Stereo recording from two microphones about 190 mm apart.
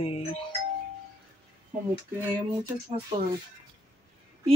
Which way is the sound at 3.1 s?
30° right (ahead or behind).